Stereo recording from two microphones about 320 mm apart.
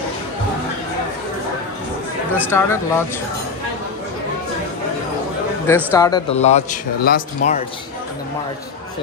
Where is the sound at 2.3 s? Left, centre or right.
Centre.